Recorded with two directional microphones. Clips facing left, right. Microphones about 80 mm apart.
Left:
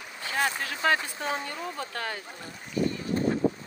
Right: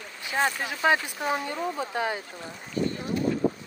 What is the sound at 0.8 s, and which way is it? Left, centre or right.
Speech, centre.